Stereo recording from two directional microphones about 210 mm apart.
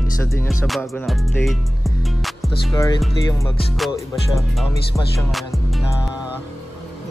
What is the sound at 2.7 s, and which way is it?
Music, 20° left (ahead or behind).